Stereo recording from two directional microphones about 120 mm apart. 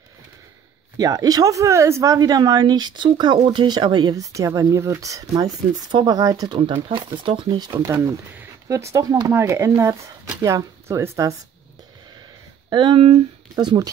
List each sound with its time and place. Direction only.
0.9 s speech: 30° right (ahead or behind)
7.7 s speech: 20° right (ahead or behind)
12.6 s speech: 40° right (ahead or behind)